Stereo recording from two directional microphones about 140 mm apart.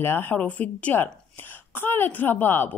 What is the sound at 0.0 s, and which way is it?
A woman's voice, 15° left (ahead or behind).